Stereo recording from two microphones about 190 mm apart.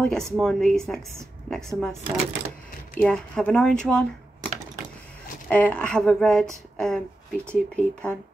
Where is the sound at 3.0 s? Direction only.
5° left (ahead or behind).